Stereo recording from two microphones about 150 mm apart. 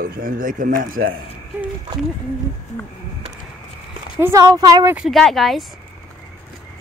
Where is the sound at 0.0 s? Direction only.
70° right (ahead or behind).